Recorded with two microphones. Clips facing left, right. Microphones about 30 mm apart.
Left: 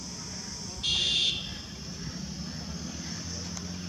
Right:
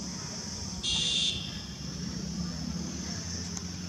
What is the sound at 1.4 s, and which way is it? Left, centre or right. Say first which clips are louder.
Vehicle: even; centre.